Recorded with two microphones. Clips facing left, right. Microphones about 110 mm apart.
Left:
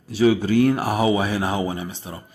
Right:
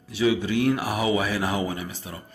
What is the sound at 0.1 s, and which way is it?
Speech, 40° left (ahead or behind).